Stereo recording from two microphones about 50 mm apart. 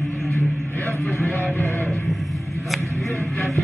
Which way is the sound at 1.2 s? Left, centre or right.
Left.